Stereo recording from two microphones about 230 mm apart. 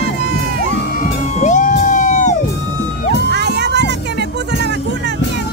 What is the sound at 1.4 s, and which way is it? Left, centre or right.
Music, left.